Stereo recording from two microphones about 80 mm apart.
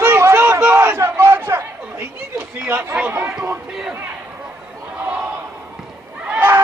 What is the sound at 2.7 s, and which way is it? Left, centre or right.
Speech, right.